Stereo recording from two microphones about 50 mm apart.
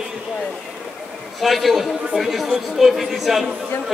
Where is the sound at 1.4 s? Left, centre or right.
Centre.